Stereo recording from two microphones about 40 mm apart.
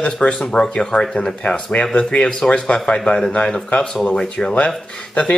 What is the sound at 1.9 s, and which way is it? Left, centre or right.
Speech, left.